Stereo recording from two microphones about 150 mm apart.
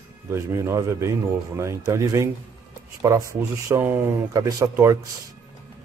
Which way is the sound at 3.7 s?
15° right (ahead or behind).